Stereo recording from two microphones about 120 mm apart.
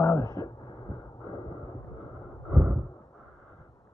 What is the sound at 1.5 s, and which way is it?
Vehicle, 40° right (ahead or behind).